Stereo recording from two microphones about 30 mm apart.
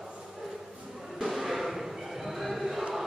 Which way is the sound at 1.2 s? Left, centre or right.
Centre.